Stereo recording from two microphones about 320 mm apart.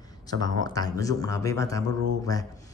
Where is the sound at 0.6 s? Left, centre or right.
Centre.